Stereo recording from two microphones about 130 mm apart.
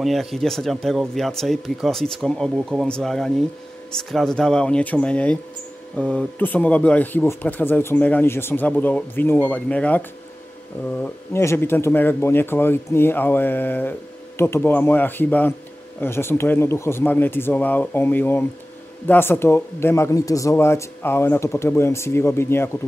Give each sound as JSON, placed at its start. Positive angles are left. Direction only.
{"t": 0.0, "sound": "speech", "side_deg": 0}